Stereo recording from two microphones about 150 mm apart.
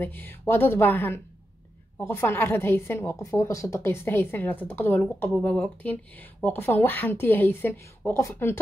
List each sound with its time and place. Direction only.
0.0 s a woman's voice: 15° left (ahead or behind)